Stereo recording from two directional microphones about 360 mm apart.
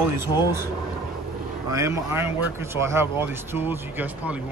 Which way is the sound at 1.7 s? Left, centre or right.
Centre.